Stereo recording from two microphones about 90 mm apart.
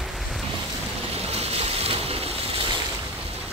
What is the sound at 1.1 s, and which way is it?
Boat, 90° right.